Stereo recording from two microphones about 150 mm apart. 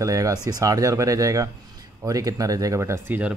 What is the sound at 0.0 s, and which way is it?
Speech, 20° right (ahead or behind).